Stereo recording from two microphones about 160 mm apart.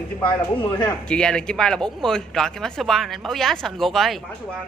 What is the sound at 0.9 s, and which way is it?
A woman's voice, 5° left (ahead or behind).